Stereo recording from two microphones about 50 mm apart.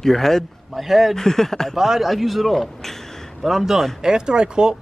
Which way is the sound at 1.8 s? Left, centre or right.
Centre.